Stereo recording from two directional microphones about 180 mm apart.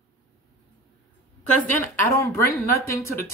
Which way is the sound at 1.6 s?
15° left (ahead or behind).